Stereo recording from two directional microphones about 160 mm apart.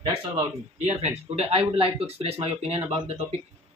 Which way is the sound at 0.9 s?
40° right (ahead or behind).